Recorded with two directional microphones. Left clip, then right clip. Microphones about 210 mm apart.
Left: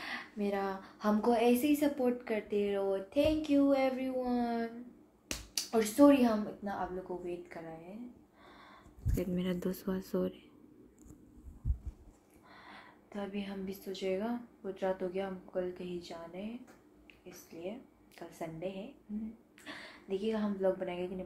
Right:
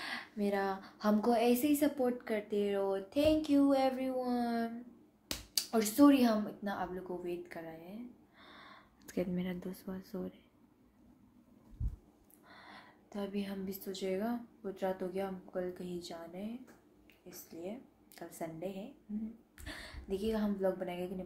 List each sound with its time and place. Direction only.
0.0 s a woman's voice: 10° right (ahead or behind)
9.5 s speech: 20° left (ahead or behind)
12.4 s a woman's voice: 5° right (ahead or behind)